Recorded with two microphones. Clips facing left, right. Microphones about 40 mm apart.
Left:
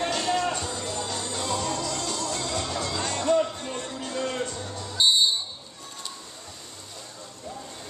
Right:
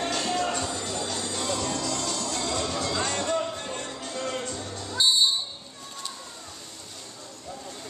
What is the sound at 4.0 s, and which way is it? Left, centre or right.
Music, centre.